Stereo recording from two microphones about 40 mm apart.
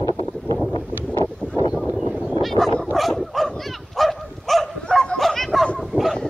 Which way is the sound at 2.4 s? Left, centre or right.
Centre.